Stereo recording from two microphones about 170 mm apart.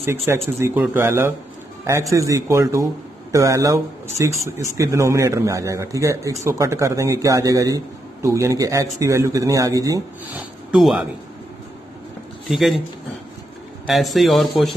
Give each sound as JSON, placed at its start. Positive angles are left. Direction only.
{"t": 0.3, "sound": "speech", "side_deg": -15}
{"t": 10.3, "sound": "speech", "side_deg": -5}
{"t": 12.4, "sound": "speech", "side_deg": 0}
{"t": 13.8, "sound": "speech", "side_deg": 0}